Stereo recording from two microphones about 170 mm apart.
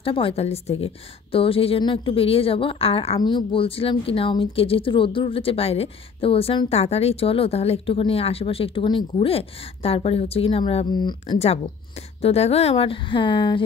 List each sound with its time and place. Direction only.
0.0 s speech: 30° left (ahead or behind)